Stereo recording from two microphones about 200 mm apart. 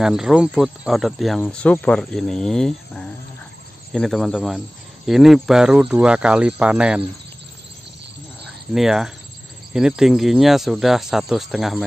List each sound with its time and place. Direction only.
0.0 s speech: 5° right (ahead or behind)
8.7 s speech: centre (ahead or behind)